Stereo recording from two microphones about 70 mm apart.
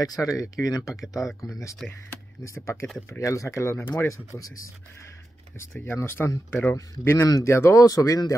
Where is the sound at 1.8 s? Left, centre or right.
Centre.